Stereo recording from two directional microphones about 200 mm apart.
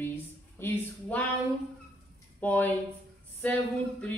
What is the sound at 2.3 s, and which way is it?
A woman's voice, 10° left (ahead or behind).